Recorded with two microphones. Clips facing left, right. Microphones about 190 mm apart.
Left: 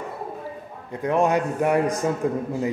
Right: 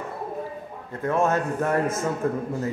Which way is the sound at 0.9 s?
15° left (ahead or behind).